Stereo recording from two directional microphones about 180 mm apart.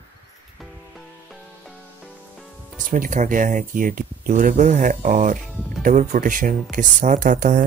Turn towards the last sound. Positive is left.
turn(degrees=-50)  # may be behind; listen again after turning